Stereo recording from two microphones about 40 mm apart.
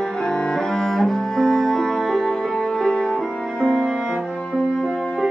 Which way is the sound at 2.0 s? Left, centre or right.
Centre.